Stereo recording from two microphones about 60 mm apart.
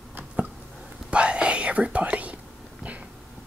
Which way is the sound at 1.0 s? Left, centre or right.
Centre.